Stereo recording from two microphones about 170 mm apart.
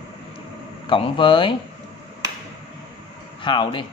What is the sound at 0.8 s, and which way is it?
Speech, 30° left (ahead or behind).